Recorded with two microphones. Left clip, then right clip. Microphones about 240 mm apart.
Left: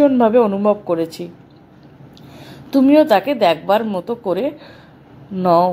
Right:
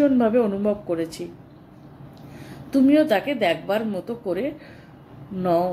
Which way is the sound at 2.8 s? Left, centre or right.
Centre.